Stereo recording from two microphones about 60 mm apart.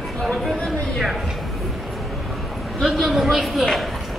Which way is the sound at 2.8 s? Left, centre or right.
Centre.